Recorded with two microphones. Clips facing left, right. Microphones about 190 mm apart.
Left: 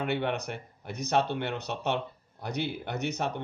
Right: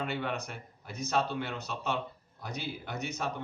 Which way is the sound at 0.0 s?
65° left (ahead or behind).